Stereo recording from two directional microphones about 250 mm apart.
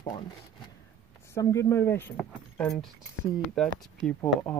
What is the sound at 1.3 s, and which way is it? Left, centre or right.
Speech, centre.